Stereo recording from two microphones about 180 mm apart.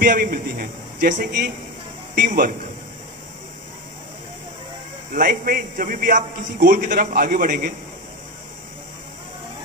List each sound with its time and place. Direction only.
0.0 s a man's voice: 50° right (ahead or behind)
5.1 s a man's voice: 50° right (ahead or behind)